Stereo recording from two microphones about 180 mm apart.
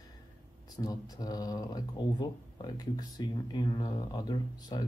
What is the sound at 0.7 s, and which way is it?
Speech, 20° left (ahead or behind).